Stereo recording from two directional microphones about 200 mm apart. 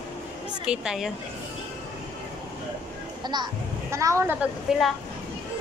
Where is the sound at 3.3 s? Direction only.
20° right (ahead or behind).